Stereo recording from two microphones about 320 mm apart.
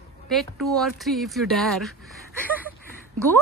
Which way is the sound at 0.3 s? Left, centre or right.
Centre.